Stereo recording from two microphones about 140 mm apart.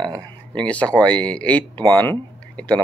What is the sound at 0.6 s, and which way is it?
Speech, 10° left (ahead or behind).